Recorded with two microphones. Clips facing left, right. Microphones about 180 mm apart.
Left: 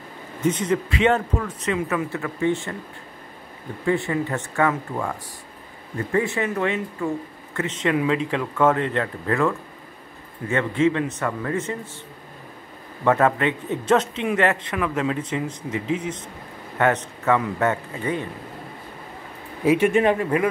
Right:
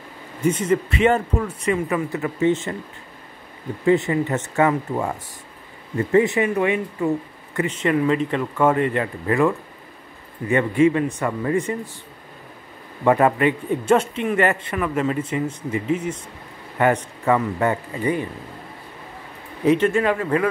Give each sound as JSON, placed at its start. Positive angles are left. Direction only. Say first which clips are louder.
{"t": 0.4, "sound": "a man's voice", "louder": "right 2 dB", "side_deg": -10}
{"t": 3.8, "sound": "speech", "louder": "right 4 dB", "side_deg": -20}
{"t": 6.1, "sound": "a man's voice", "louder": "right 5 dB", "side_deg": -15}
{"t": 13.0, "sound": "a man's voice", "louder": "right 2 dB", "side_deg": -10}
{"t": 19.6, "sound": "speech", "louder": "right 1 dB", "side_deg": 5}
{"t": 19.9, "sound": "a man's voice", "louder": "left 1 dB", "side_deg": 20}